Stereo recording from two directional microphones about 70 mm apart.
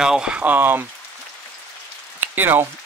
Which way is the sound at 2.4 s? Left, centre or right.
Right.